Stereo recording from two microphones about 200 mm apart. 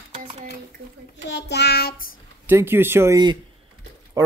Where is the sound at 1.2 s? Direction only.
60° left (ahead or behind).